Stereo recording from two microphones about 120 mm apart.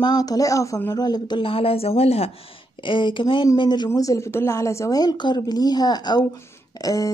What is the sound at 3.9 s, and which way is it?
Speech, 25° left (ahead or behind).